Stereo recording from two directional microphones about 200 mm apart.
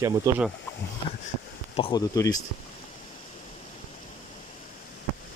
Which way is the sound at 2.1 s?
15° left (ahead or behind).